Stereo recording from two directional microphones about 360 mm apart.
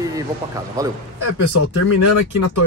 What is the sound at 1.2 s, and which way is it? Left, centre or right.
Speech, left.